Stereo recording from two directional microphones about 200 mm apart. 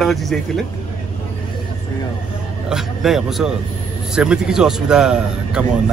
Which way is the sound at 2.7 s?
Centre (ahead or behind).